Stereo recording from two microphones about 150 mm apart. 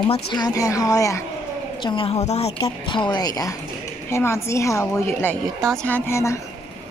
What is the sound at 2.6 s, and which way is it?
A woman's voice, 35° left (ahead or behind).